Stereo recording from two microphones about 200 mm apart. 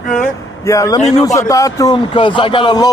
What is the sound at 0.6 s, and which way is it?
Speech, 15° left (ahead or behind).